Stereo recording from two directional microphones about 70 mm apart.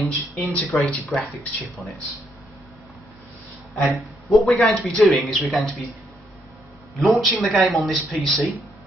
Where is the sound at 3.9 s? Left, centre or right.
Centre.